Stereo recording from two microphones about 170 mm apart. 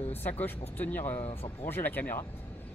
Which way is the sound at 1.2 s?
35° left (ahead or behind).